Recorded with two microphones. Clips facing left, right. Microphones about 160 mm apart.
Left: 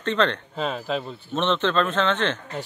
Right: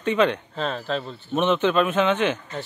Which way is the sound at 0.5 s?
5° left (ahead or behind).